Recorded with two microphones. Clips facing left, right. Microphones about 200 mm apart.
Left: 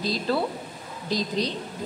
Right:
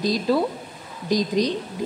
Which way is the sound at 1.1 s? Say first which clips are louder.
Right 6 dB; 15° right (ahead or behind).